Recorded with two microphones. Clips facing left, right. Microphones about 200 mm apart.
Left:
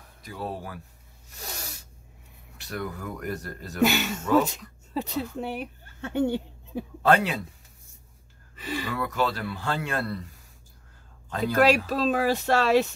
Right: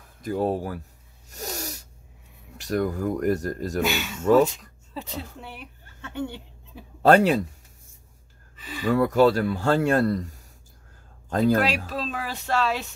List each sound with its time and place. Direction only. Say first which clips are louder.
0.2 s speech: right 10 dB; 45° right (ahead or behind)
1.3 s cat: right 7 dB; 40° right (ahead or behind)
2.5 s a man's voice: right 9 dB; 40° right (ahead or behind)
3.8 s speech: left 3 dB; 45° left (ahead or behind)
7.0 s speech: right 6 dB; 45° right (ahead or behind)
8.8 s a man's voice: right 11 dB; 45° right (ahead or behind)
11.6 s speech: left 6 dB; 45° left (ahead or behind)